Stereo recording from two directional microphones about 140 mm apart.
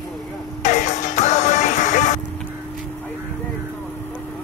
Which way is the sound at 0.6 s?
55° left (ahead or behind).